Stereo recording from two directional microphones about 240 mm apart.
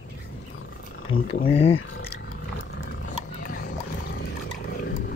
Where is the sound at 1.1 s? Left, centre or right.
Left.